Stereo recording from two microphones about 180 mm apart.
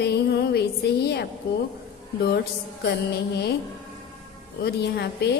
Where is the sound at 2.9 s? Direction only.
65° left (ahead or behind).